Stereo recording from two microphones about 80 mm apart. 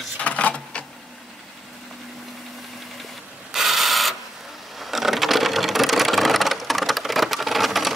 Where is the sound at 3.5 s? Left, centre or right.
Centre.